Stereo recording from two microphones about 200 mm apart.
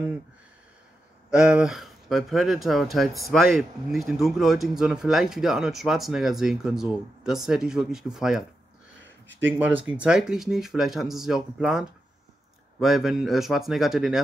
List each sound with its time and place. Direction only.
1.3 s speech: 5° right (ahead or behind)
9.0 s a sound: 65° right (ahead or behind)
9.5 s speech: 10° right (ahead or behind)